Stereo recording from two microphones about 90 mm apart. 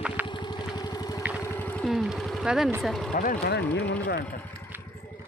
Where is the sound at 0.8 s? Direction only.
45° left (ahead or behind).